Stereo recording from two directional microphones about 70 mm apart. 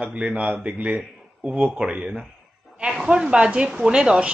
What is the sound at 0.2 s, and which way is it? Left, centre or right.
A woman's voice, centre.